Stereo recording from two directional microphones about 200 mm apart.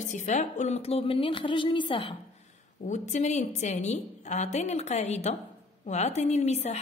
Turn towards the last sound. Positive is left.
turn(degrees=35)  # may be behind; listen again after turning